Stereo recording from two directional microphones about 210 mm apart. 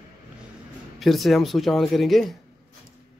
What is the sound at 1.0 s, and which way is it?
A man's voice, centre (ahead or behind).